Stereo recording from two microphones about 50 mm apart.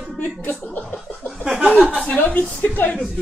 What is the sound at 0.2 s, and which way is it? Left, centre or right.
Speech, left.